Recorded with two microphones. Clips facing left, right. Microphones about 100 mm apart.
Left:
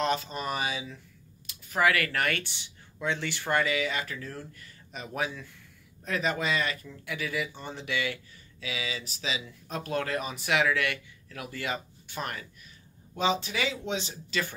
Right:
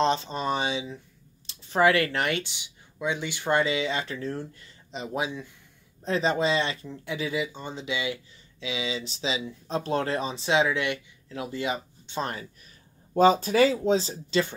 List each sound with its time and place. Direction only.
0.0 s speech: 30° right (ahead or behind)
6.0 s speech: 30° right (ahead or behind)
13.1 s speech: 45° right (ahead or behind)